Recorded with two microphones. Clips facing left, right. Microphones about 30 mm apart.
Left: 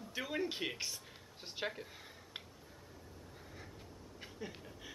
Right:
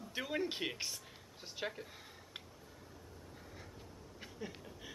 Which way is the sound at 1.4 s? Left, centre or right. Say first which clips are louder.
Left 1 dB; centre.